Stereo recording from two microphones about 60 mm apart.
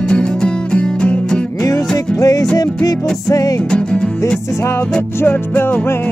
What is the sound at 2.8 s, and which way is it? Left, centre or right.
Music, left.